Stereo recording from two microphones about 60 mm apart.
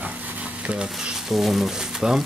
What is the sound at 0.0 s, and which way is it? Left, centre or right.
Stir, right.